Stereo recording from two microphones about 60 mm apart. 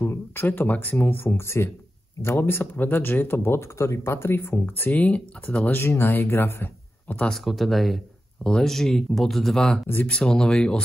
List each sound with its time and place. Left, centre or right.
0.0 s speech: left
4.9 s speech: left
5.7 s speech: left
7.2 s speech: centre